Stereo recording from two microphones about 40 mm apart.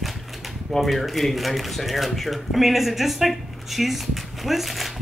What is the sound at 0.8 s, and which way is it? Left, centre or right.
Speech, centre.